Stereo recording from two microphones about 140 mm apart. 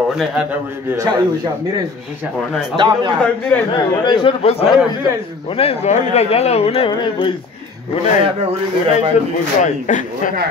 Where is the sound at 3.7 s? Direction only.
35° left (ahead or behind).